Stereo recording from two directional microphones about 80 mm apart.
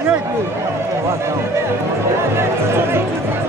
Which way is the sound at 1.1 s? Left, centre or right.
Right.